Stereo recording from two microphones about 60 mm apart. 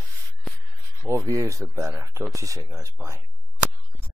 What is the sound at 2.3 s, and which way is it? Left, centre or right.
Speech, right.